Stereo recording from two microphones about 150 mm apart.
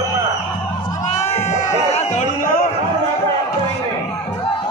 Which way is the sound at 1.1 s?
50° left (ahead or behind).